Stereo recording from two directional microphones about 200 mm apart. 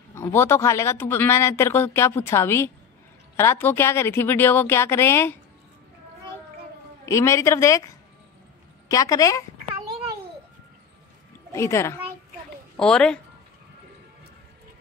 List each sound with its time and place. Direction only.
0.1 s a man's voice: 10° left (ahead or behind)
7.1 s a man's voice: 15° left (ahead or behind)
8.8 s a woman's voice: 15° left (ahead or behind)
11.5 s a man's voice: 15° left (ahead or behind)
12.7 s a woman's voice: 5° left (ahead or behind)